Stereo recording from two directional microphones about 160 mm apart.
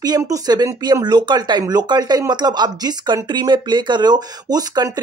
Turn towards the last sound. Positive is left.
turn(degrees=-25)  # may be behind; listen again after turning